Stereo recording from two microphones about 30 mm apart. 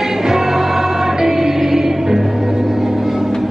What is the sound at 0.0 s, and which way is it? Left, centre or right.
Music, centre.